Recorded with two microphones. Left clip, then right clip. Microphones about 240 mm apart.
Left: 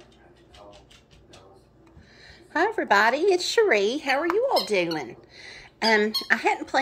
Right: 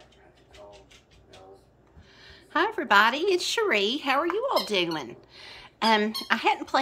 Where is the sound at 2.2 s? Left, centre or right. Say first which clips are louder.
Left 2 dB; right.